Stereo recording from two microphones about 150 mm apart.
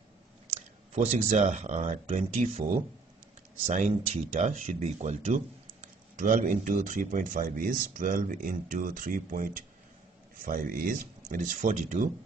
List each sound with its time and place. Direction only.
0.6 s speech: 45° right (ahead or behind)
3.7 s speech: 55° right (ahead or behind)